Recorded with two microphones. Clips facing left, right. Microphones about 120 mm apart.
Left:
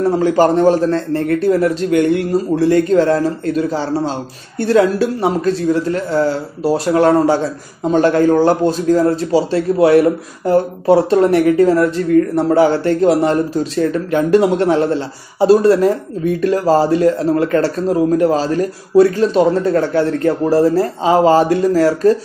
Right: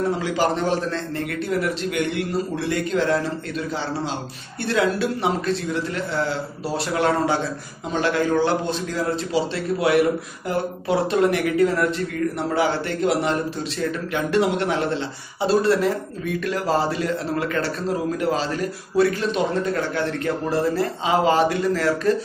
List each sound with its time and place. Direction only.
0.2 s speech: 50° left (ahead or behind)